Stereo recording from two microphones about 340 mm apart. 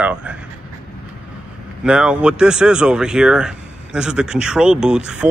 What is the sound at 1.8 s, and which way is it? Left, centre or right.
Speech, centre.